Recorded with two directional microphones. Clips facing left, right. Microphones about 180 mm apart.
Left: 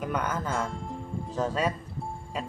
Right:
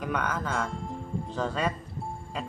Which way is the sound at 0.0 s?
5° left (ahead or behind).